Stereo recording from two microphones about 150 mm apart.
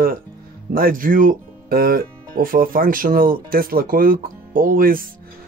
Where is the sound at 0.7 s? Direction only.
70° right (ahead or behind).